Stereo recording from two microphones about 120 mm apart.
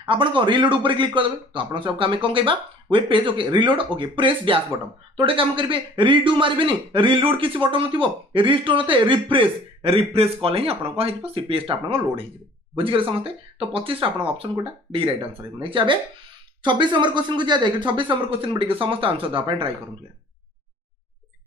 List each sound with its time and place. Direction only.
0.0 s speech: 45° right (ahead or behind)